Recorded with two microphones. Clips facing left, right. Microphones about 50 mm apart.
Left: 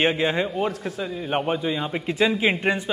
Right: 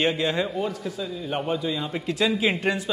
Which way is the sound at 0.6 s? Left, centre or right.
Left.